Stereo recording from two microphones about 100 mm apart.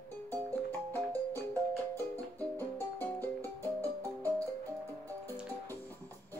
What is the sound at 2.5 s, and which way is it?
Music, 20° left (ahead or behind).